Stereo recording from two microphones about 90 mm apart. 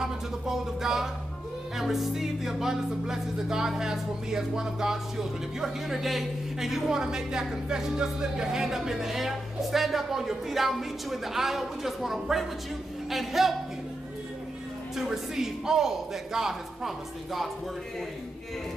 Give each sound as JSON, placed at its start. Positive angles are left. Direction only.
{"t": 0.0, "sound": "music", "side_deg": -5}
{"t": 15.0, "sound": "music", "side_deg": -5}